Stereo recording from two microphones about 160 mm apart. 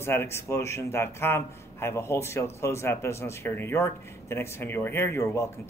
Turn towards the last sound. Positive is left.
turn(degrees=15)  # may be behind; listen again after turning